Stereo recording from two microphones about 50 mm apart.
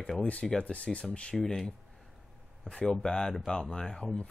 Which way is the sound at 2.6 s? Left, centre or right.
Centre.